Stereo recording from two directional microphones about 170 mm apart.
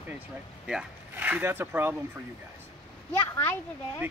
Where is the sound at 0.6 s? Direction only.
5° right (ahead or behind).